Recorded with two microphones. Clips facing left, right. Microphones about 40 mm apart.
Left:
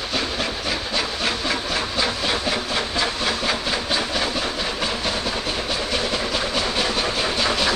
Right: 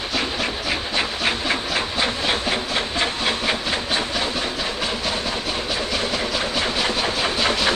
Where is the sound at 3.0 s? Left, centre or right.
Right.